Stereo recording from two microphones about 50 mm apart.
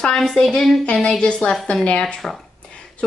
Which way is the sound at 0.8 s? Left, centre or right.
Centre.